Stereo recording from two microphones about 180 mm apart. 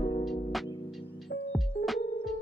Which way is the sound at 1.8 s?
55° left (ahead or behind).